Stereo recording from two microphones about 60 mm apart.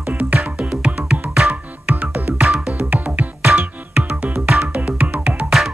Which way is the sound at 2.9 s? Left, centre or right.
Right.